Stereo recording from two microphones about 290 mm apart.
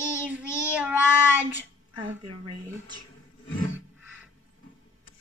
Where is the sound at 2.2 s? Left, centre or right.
Right.